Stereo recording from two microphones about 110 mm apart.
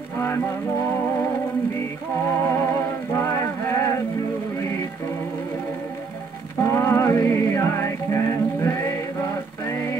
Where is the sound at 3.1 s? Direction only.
25° left (ahead or behind).